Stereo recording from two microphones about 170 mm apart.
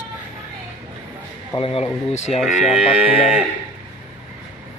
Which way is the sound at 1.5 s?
35° left (ahead or behind).